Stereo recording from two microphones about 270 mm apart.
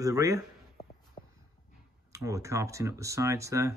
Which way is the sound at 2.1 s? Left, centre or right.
Centre.